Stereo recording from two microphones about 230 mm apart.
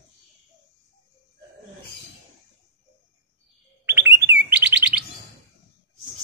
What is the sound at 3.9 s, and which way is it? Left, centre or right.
Chirp, centre.